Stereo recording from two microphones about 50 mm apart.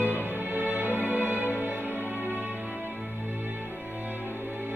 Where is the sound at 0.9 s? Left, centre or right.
Left.